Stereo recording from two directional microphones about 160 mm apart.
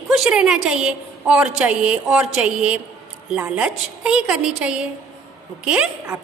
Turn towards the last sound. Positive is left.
turn(degrees=-5)  # may be behind; listen again after turning